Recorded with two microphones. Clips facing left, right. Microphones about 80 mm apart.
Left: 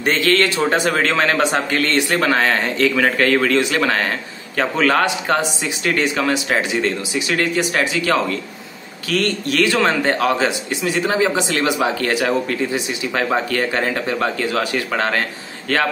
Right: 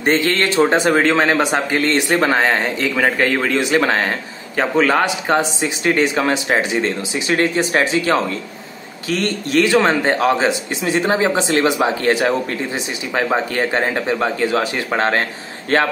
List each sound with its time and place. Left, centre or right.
0.0 s a man's voice: right